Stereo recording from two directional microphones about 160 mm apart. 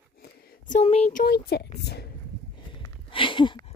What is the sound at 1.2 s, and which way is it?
Speech, 90° left.